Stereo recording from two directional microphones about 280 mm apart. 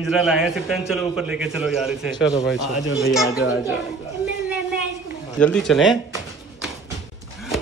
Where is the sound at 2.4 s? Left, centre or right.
Left.